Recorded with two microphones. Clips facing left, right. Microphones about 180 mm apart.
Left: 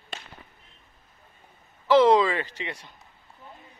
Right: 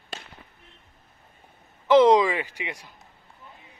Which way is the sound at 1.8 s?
20° right (ahead or behind).